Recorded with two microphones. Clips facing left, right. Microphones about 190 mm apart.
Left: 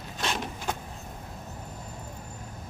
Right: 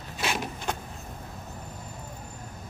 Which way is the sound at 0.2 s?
5° right (ahead or behind).